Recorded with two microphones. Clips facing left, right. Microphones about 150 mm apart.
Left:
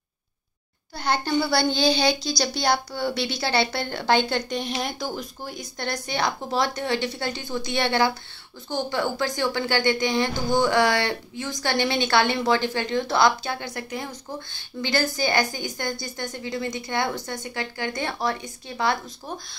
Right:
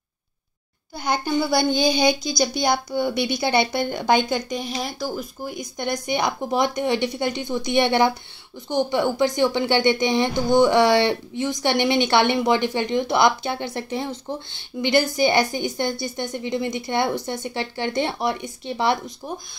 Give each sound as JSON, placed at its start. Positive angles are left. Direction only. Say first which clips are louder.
{"t": 0.9, "sound": "a woman's voice", "louder": "right 1 dB", "side_deg": -10}
{"t": 5.8, "sound": "a woman's voice", "louder": "right 3 dB", "side_deg": -15}